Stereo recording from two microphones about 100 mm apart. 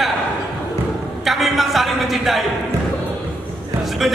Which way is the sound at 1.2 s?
Centre (ahead or behind).